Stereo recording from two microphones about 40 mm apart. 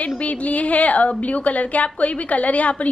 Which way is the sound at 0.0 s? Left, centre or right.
Left.